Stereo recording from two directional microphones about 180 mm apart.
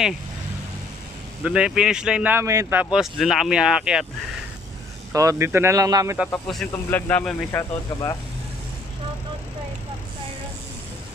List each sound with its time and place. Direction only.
1.4 s speech: 5° right (ahead or behind)
5.1 s speech: 20° right (ahead or behind)
6.3 s speech: 5° left (ahead or behind)